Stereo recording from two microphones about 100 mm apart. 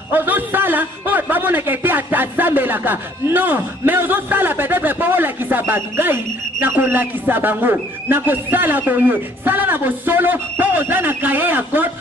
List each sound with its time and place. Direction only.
0.1 s a man's voice: 20° right (ahead or behind)